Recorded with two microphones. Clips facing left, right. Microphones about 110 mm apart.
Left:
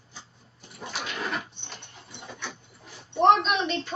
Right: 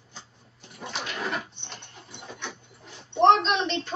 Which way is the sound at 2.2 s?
20° right (ahead or behind).